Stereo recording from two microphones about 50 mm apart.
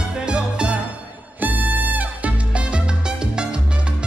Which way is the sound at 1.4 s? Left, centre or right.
Right.